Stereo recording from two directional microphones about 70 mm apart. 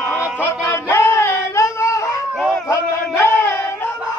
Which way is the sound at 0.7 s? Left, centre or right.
Left.